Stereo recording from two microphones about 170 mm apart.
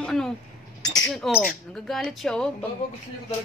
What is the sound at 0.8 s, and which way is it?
Chink, 20° left (ahead or behind).